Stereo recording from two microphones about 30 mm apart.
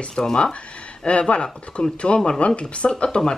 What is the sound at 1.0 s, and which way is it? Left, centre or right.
Speech, left.